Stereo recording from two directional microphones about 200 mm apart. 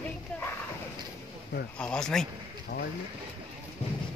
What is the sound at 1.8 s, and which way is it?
Speech, 5° left (ahead or behind).